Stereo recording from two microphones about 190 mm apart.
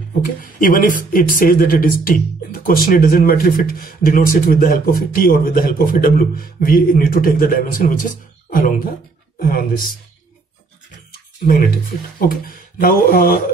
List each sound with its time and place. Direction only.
0.2 s speech: 45° left (ahead or behind)
12.2 s speech: 50° left (ahead or behind)